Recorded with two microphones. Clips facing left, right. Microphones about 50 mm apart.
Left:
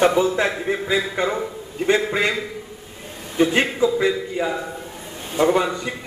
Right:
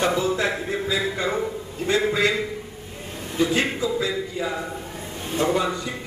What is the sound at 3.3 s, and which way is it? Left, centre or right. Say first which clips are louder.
A man's voice: left 4 dB; left.